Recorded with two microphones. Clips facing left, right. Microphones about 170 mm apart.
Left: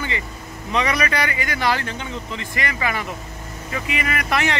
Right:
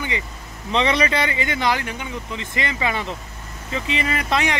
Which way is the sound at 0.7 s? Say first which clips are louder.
Right 2 dB; 25° right (ahead or behind).